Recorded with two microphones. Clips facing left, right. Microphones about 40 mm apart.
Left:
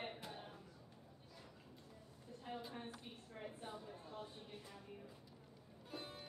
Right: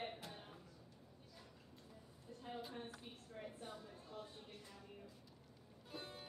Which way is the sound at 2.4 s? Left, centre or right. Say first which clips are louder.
Even; centre.